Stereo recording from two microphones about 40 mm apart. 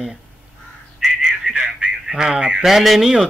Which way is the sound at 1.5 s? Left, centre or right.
Right.